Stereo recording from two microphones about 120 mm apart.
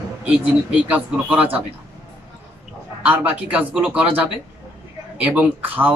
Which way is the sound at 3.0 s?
10° right (ahead or behind).